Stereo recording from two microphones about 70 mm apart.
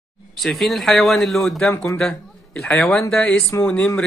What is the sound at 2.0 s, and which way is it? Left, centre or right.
Speech, centre.